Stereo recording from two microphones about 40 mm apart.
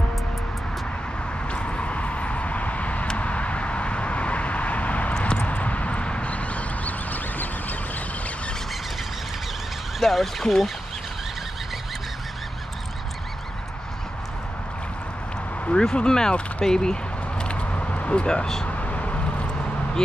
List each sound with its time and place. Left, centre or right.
1.5 s vehicle: left
5.4 s a sound: left
9.9 s speech: centre
15.7 s speech: centre
16.6 s a sound: centre
18.7 s vehicle: left